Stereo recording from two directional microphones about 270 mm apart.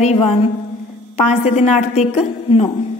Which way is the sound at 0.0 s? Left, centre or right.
Left.